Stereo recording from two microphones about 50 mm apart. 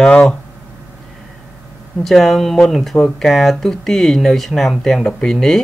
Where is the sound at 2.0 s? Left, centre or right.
Centre.